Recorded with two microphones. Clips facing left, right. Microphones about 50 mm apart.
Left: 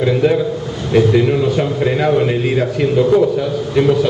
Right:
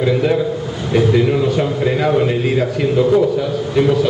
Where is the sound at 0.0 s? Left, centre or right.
Centre.